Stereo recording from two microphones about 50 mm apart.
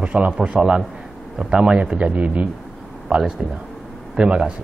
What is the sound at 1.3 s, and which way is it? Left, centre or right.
Speech, right.